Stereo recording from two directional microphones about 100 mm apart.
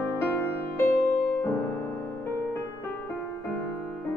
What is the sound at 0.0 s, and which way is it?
Music, 20° left (ahead or behind).